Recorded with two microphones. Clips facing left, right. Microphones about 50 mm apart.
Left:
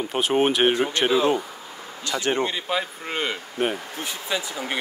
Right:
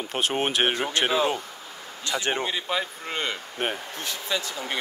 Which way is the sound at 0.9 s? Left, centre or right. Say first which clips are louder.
Left 3 dB; centre.